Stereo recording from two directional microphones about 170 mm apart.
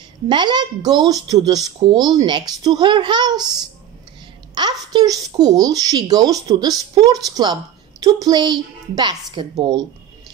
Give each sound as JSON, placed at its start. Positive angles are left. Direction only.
{"t": 0.3, "sound": "a child's voice", "side_deg": -25}
{"t": 4.6, "sound": "a child's voice", "side_deg": -25}